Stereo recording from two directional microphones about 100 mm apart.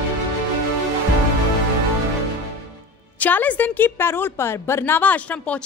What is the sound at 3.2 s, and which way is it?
A woman's voice, 15° left (ahead or behind).